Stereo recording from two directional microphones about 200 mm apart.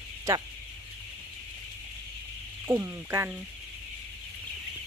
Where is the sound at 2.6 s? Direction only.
15° right (ahead or behind).